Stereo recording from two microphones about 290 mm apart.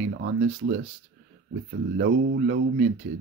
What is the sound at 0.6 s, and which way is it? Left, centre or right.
Speech, right.